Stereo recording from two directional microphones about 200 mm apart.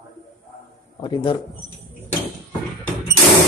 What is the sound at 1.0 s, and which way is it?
Speech, 25° left (ahead or behind).